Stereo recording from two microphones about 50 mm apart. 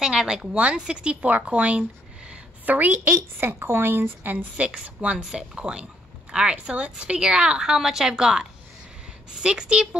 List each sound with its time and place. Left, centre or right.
0.0 s a woman's voice: centre
2.7 s speech: right
4.6 s a woman's voice: right